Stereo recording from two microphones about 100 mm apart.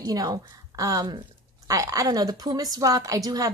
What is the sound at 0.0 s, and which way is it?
A woman's voice, 40° right (ahead or behind).